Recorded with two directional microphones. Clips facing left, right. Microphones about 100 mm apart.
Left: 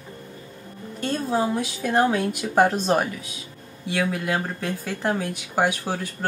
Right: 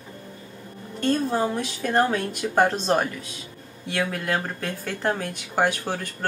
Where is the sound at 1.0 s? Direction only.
10° left (ahead or behind).